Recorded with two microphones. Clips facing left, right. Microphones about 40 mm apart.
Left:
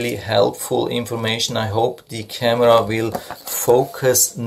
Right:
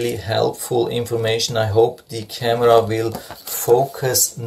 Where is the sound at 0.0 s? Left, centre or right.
Left.